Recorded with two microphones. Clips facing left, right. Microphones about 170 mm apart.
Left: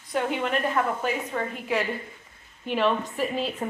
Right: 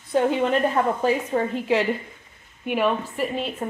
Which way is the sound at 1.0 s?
30° right (ahead or behind).